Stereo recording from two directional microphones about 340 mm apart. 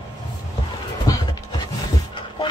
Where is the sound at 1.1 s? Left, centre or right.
Centre.